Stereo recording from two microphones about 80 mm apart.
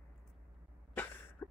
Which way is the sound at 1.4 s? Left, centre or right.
Left.